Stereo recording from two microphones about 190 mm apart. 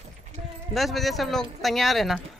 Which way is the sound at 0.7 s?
Centre (ahead or behind).